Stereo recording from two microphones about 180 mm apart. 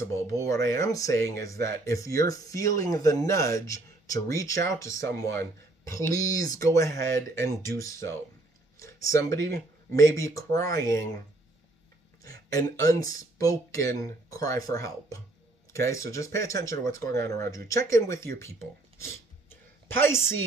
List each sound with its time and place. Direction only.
0.1 s speech: 15° left (ahead or behind)
12.5 s speech: 20° left (ahead or behind)
19.5 s a sound: 15° left (ahead or behind)